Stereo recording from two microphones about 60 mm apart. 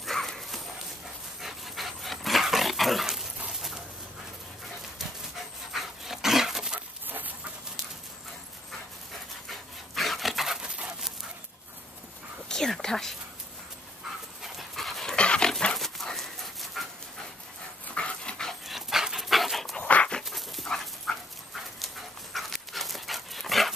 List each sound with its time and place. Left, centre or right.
0.0 s horse: centre
1.4 s dog: centre
5.7 s dog: centre
7.1 s dog: right
9.5 s dog: centre
12.4 s whispering: centre
14.4 s dog: centre
15.1 s dog: centre
15.7 s dog: centre
17.9 s dog: centre
18.7 s dog: centre
19.8 s dog: left
20.2 s dog: centre